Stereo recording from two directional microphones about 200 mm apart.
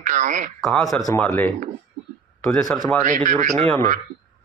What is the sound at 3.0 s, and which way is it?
Speech, 40° right (ahead or behind).